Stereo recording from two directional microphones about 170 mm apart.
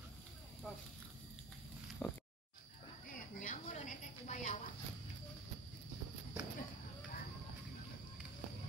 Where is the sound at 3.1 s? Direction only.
50° left (ahead or behind).